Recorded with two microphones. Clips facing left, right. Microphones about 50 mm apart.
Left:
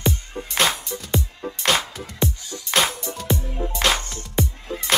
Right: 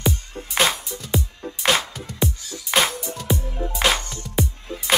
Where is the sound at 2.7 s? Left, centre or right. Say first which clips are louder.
Right 1 dB; centre.